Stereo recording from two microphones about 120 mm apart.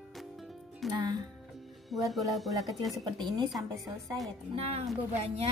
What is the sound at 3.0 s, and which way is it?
Speech, 35° right (ahead or behind).